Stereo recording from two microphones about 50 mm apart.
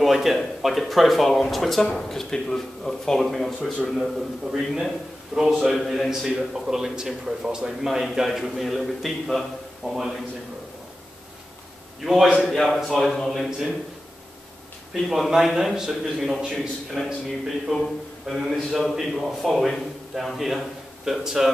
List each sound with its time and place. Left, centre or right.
0.0 s a man's voice: centre
12.0 s speech: centre
15.0 s speech: centre
17.7 s a man's voice: right
18.2 s a man's voice: centre